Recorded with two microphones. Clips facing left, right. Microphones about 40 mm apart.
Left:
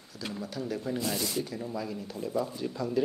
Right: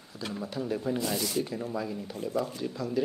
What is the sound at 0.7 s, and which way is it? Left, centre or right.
Speech, centre.